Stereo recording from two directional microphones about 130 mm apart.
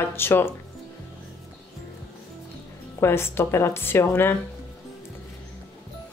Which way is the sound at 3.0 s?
20° left (ahead or behind).